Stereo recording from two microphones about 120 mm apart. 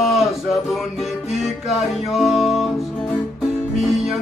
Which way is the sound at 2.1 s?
Centre (ahead or behind).